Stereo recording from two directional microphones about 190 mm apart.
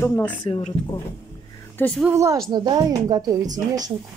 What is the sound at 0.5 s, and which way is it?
Speech, 25° left (ahead or behind).